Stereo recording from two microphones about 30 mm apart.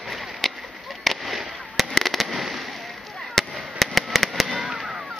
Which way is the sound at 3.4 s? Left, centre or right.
Centre.